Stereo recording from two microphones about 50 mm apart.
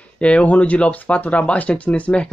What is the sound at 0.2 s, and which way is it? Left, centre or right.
Speech, left.